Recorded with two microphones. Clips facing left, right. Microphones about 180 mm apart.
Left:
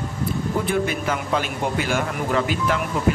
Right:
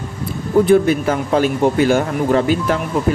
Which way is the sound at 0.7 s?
35° right (ahead or behind).